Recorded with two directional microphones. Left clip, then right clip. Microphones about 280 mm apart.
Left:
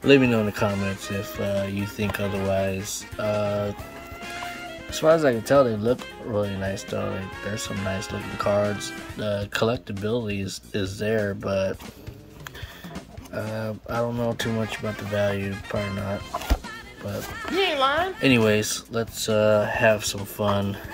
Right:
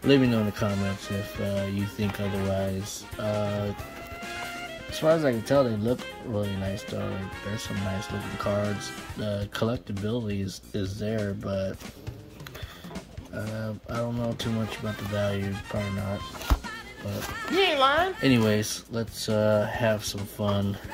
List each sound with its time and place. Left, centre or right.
0.0 s speech: centre
4.9 s speech: centre
13.3 s speech: centre
17.4 s speech: centre